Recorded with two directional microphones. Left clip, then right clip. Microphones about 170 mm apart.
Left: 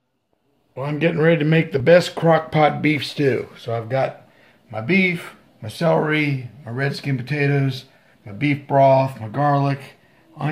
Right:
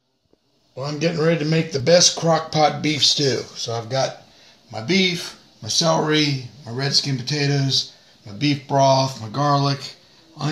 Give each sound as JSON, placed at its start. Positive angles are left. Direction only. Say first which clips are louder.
{"t": 0.7, "sound": "speech", "louder": "left 2 dB", "side_deg": 15}
{"t": 2.9, "sound": "speech", "louder": "right 2 dB", "side_deg": 5}